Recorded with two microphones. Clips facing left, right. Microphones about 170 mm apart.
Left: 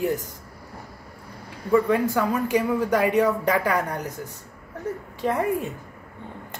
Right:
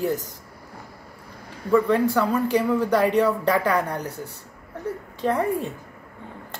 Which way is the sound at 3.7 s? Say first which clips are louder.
Right 1 dB; 35° right (ahead or behind).